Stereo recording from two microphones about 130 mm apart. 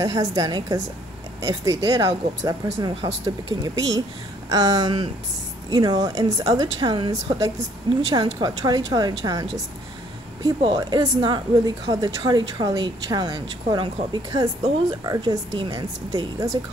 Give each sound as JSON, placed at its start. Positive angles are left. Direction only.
{"t": 0.0, "sound": "a woman's voice", "side_deg": -25}
{"t": 10.6, "sound": "a woman's voice", "side_deg": -35}